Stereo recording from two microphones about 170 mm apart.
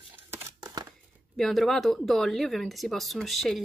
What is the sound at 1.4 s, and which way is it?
Speech, centre (ahead or behind).